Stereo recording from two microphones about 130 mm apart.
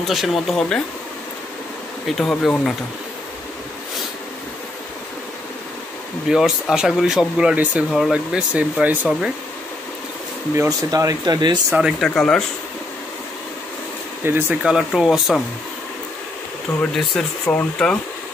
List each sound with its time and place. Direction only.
0.1 s speech: centre (ahead or behind)
2.0 s speech: centre (ahead or behind)
6.2 s speech: 5° right (ahead or behind)
10.5 s speech: 25° right (ahead or behind)
11.7 s speech: 5° right (ahead or behind)
12.1 s speech: 5° left (ahead or behind)
14.2 s speech: 15° right (ahead or behind)
14.6 s speech: 5° right (ahead or behind)
16.9 s speech: 5° left (ahead or behind)